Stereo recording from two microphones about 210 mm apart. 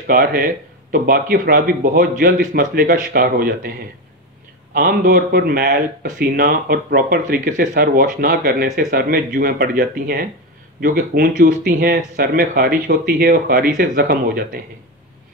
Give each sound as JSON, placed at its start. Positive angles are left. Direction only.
{"t": 0.0, "sound": "speech", "side_deg": -45}
{"t": 4.7, "sound": "speech", "side_deg": -45}